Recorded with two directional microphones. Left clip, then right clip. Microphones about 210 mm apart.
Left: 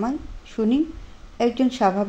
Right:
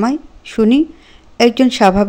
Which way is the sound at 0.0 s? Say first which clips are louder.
Right 9 dB; 35° right (ahead or behind).